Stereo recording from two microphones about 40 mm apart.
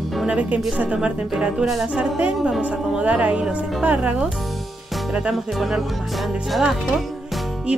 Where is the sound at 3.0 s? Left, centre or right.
Right.